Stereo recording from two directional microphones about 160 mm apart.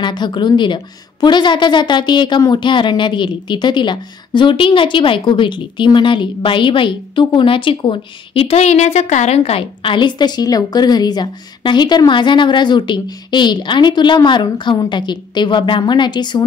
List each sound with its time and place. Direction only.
0.0 s a woman's voice: 30° left (ahead or behind)